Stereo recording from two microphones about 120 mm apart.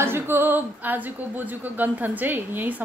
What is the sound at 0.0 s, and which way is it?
Speech, 20° right (ahead or behind).